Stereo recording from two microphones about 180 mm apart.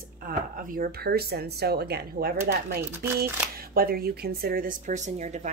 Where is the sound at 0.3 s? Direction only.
55° right (ahead or behind).